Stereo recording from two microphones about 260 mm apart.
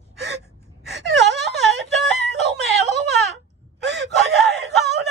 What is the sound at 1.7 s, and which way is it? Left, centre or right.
Wail, right.